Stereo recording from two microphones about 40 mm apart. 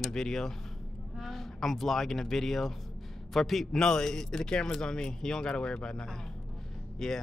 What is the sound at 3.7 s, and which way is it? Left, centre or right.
A man's voice, centre.